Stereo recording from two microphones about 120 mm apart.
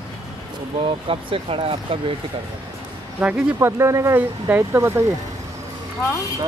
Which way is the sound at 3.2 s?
10° right (ahead or behind).